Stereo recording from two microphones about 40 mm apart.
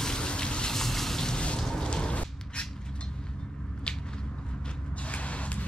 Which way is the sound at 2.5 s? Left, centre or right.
Left.